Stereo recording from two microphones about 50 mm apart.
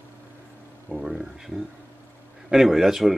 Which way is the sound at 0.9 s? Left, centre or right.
Centre.